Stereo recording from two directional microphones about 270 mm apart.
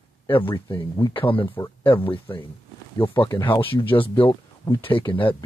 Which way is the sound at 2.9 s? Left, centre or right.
Centre.